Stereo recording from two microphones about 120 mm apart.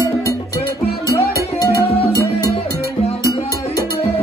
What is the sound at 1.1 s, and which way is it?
Music, 25° left (ahead or behind).